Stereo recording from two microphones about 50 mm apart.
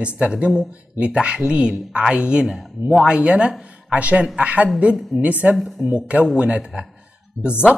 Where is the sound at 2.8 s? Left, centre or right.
Right.